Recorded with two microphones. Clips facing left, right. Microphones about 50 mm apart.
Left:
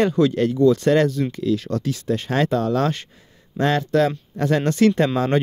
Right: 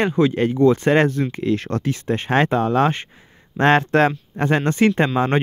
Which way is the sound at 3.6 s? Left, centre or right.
Right.